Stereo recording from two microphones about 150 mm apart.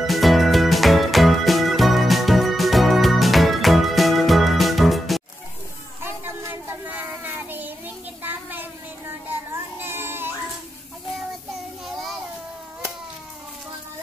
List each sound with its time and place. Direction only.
0.0 s music: centre (ahead or behind)
6.0 s child singing: 15° right (ahead or behind)